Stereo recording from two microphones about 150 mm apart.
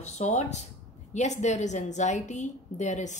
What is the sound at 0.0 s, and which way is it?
A woman's voice, 50° left (ahead or behind).